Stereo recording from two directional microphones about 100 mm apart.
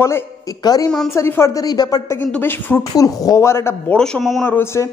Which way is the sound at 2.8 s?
35° left (ahead or behind).